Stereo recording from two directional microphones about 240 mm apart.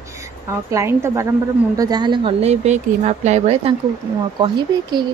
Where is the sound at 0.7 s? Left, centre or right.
Centre.